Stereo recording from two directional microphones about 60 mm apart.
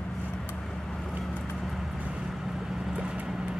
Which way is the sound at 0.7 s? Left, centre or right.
Centre.